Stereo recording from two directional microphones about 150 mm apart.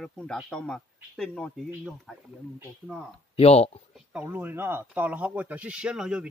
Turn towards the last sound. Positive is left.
turn(degrees=-5)  # may be behind; listen again after turning